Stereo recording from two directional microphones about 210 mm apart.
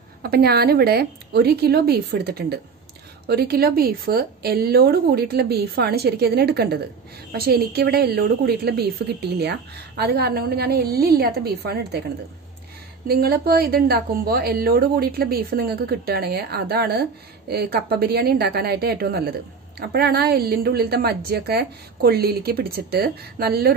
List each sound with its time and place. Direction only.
0.2 s a woman's voice: 45° right (ahead or behind)
13.2 s a woman's voice: 45° right (ahead or behind)